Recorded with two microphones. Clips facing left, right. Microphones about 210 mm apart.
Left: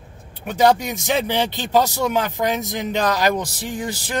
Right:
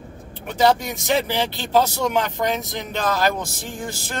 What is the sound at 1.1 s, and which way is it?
Speech, 15° left (ahead or behind).